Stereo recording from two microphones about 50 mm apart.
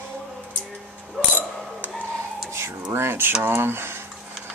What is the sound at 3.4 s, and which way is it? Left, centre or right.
Speech, right.